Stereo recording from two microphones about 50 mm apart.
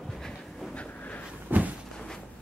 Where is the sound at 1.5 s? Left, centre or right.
Right.